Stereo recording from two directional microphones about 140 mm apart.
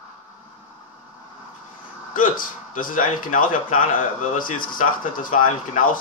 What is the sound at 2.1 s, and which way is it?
Speech, 75° left (ahead or behind).